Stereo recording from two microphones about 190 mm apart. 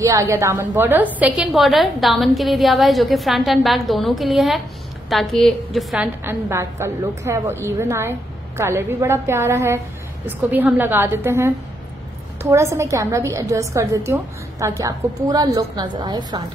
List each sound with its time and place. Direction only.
0.0 s a woman's voice: 15° right (ahead or behind); by 6.0 s centre (ahead or behind)
6.2 s a woman's voice: 15° right (ahead or behind)